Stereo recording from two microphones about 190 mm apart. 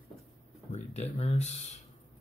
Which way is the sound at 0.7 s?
35° left (ahead or behind).